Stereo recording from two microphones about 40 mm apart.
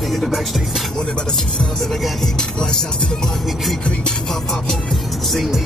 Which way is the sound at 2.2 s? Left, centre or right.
Centre.